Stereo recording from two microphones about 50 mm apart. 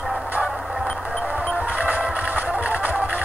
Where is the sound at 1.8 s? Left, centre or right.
Right.